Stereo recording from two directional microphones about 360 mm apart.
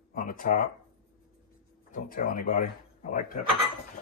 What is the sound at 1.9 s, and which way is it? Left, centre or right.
Speech, left.